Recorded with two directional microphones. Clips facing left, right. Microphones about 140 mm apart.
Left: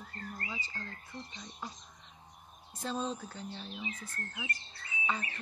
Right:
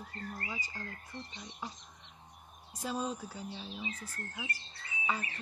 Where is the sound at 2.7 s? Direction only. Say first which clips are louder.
Even; 10° right (ahead or behind).